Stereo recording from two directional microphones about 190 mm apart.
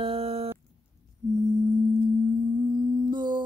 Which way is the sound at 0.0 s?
30° right (ahead or behind).